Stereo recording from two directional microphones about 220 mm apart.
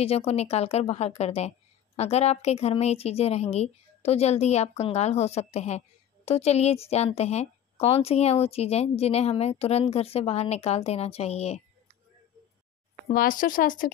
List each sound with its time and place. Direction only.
0.0 s a woman's voice: 25° left (ahead or behind)
13.1 s speech: 40° left (ahead or behind)